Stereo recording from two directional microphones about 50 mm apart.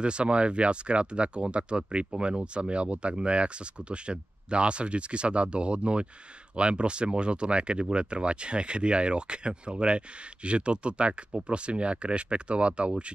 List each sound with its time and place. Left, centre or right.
0.0 s speech: right